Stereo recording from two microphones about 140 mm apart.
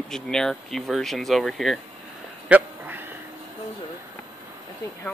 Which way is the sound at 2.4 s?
10° right (ahead or behind).